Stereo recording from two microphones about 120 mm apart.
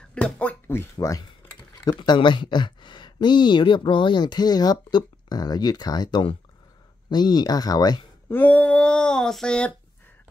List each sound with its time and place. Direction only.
0.1 s speech: 10° left (ahead or behind)
0.9 s speech: 30° left (ahead or behind)
1.9 s speech: 40° left (ahead or behind)
8.3 s speech: 15° left (ahead or behind)